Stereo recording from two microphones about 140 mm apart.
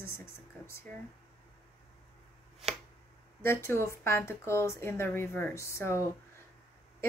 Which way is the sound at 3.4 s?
20° left (ahead or behind).